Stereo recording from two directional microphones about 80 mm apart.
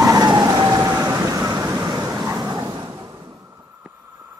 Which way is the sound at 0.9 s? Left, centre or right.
Right.